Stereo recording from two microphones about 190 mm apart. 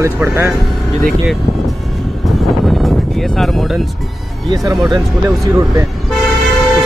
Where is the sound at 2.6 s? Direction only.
Centre (ahead or behind).